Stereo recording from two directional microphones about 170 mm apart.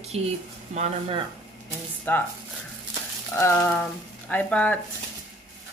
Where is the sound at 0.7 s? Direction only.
35° right (ahead or behind).